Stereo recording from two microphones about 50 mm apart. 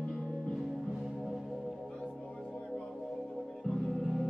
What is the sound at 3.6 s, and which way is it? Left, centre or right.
Music, centre.